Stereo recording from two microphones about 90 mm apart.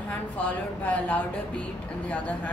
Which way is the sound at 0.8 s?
15° left (ahead or behind).